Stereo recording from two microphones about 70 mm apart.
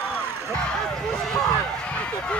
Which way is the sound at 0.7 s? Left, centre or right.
Centre.